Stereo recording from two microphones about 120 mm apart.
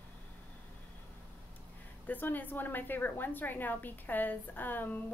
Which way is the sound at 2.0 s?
15° left (ahead or behind).